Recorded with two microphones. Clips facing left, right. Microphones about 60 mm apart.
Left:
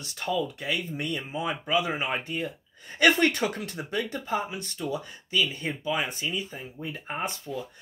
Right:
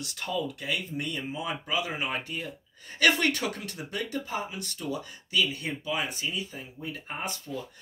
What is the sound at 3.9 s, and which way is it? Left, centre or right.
Speech, left.